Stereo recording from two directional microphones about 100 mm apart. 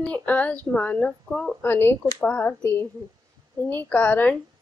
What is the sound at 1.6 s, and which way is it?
Speech, 20° left (ahead or behind).